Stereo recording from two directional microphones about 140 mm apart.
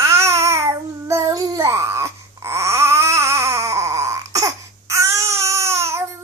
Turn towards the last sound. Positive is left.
turn(degrees=-20)  # may be behind; listen again after turning